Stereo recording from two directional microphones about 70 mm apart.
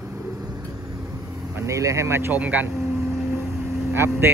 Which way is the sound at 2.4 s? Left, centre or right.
Right.